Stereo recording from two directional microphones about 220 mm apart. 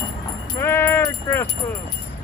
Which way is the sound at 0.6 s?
10° left (ahead or behind).